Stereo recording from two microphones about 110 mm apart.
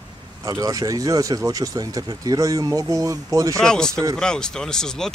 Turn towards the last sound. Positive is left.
turn(degrees=5)  # may be behind; listen again after turning